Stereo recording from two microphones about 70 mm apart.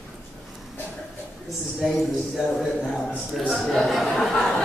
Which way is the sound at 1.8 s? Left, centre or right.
Centre.